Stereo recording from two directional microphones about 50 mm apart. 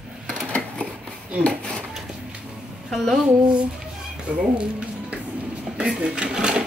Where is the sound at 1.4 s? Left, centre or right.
Centre.